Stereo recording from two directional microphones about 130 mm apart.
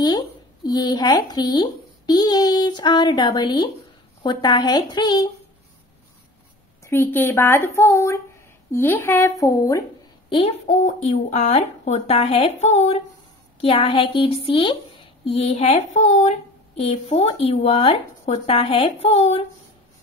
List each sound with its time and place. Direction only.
0.7 s a child's voice: 30° left (ahead or behind)
6.8 s speech: 20° left (ahead or behind)
10.3 s a woman's voice: 55° left (ahead or behind)